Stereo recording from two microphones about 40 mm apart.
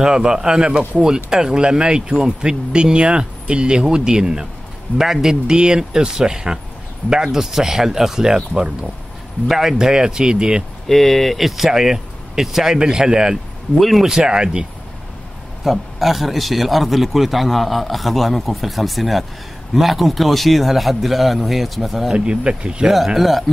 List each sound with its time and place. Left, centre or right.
0.0 s speech: centre
9.5 s speech: centre
10.9 s speech: centre
13.7 s a man's voice: centre
14.0 s speech: centre
15.6 s a man's voice: centre
22.1 s speech: right
23.0 s a man's voice: centre